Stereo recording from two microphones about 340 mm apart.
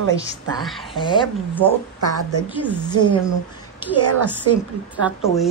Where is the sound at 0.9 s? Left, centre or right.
Centre.